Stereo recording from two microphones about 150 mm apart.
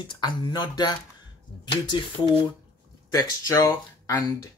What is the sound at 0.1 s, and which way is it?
Speech, 30° left (ahead or behind).